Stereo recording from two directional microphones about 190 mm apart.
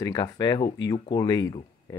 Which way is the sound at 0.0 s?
20° left (ahead or behind).